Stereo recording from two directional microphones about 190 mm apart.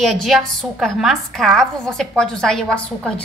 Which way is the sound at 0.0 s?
Centre (ahead or behind).